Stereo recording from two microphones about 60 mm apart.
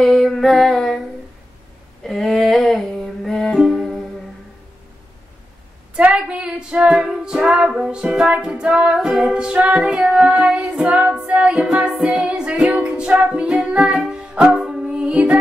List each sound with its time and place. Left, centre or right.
0.0 s music: centre
2.0 s music: centre
3.5 s music: centre
5.9 s music: centre